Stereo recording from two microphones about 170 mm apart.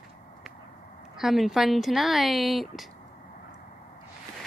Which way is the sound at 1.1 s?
Centre (ahead or behind).